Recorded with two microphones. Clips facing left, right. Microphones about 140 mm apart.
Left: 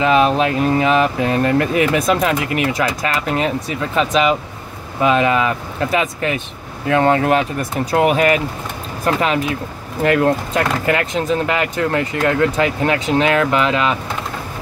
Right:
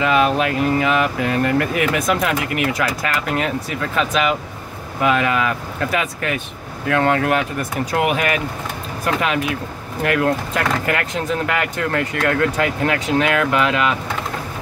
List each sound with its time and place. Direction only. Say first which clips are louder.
0.0 s speech: left 3 dB; 25° left (ahead or behind)